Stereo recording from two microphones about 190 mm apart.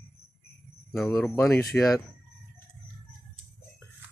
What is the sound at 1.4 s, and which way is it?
Speech, 15° left (ahead or behind).